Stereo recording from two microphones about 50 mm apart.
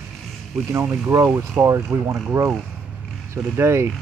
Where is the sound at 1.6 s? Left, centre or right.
Right.